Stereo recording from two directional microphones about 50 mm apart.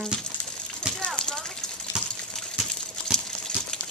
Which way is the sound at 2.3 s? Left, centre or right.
Centre.